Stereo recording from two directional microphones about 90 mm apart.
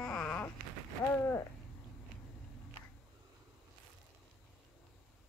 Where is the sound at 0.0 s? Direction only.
10° left (ahead or behind).